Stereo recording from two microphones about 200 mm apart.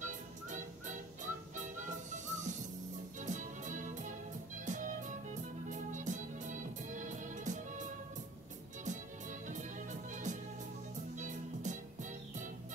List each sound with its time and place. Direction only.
0.0 s music: 40° right (ahead or behind)